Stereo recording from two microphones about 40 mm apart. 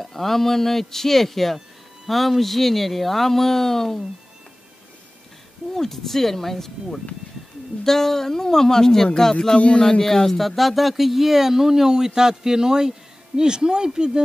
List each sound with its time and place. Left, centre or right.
0.0 s speech: centre
5.8 s speech: centre